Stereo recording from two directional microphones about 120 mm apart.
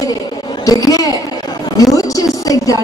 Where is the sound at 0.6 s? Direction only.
30° left (ahead or behind).